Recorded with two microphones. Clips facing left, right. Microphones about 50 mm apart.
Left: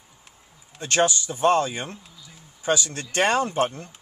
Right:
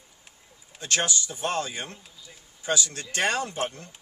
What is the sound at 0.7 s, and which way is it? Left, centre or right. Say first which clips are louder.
Speech: left 6 dB; left.